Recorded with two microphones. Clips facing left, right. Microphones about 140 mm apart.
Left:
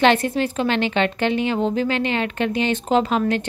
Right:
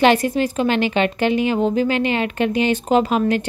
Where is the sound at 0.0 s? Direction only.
10° right (ahead or behind).